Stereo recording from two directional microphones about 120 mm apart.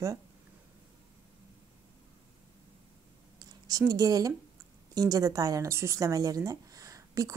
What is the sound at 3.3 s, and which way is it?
A woman's voice, 30° right (ahead or behind).